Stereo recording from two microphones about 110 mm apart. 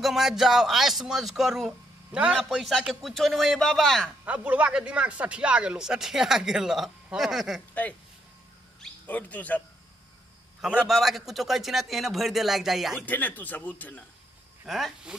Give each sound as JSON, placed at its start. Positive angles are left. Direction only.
{"t": 0.0, "sound": "speech", "side_deg": -5}
{"t": 4.2, "sound": "a man's voice", "side_deg": -10}
{"t": 9.0, "sound": "speech", "side_deg": 15}
{"t": 10.9, "sound": "speech", "side_deg": 0}
{"t": 13.0, "sound": "speech", "side_deg": 15}
{"t": 14.7, "sound": "speech", "side_deg": 0}